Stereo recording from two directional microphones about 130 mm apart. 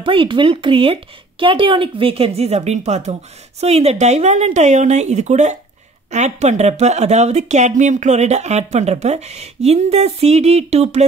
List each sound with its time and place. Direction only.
0.0 s a woman's voice: 40° right (ahead or behind); by 11.1 s 55° right (ahead or behind)